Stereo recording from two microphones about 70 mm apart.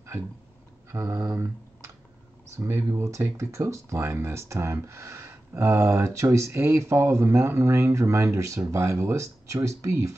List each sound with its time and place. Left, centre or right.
0.9 s speech: right
1.3 s typing: right
2.5 s speech: right